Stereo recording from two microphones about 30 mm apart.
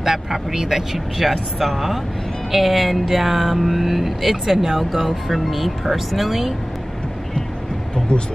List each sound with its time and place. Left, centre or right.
0.0 s speech: centre
8.1 s speech: left